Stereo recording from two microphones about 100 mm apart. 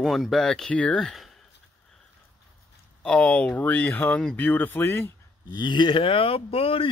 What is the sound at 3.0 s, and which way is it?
Speech, 10° left (ahead or behind).